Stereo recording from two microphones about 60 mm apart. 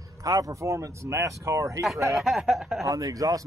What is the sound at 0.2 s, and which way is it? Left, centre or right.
Speech, right.